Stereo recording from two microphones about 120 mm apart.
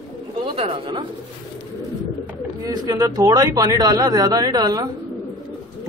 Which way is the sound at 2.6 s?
30° right (ahead or behind).